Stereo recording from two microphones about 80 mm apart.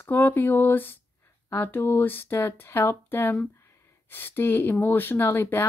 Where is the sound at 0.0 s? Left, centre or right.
Left.